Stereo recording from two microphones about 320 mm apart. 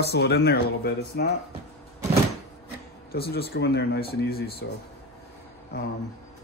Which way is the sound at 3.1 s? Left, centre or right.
Left.